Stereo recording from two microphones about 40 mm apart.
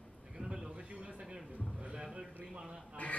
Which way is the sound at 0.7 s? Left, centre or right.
Right.